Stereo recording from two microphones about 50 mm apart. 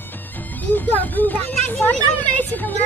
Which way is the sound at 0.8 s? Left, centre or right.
Left.